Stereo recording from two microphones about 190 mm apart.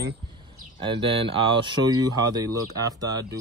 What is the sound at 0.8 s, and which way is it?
Speech, 25° right (ahead or behind).